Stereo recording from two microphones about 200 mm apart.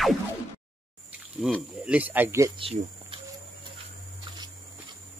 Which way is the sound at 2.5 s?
25° right (ahead or behind).